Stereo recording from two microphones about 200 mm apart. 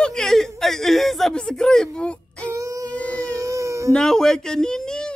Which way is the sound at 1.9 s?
5° left (ahead or behind).